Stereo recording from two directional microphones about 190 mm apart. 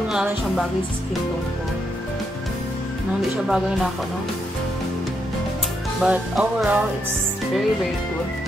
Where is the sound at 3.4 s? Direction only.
Centre (ahead or behind).